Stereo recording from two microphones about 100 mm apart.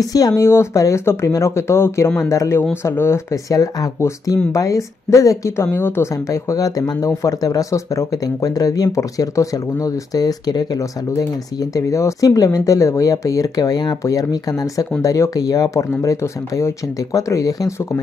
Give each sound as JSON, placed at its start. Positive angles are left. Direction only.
{"t": 0.0, "sound": "speech", "side_deg": 35}
{"t": 5.7, "sound": "speech", "side_deg": 20}